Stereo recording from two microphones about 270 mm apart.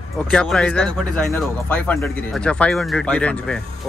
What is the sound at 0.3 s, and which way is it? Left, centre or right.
Speech, centre.